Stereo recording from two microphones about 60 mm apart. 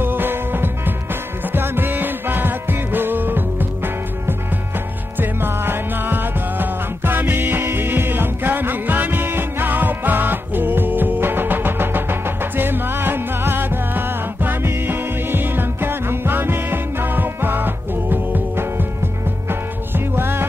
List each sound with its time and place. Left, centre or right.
0.0 s music: right
19.9 s music: right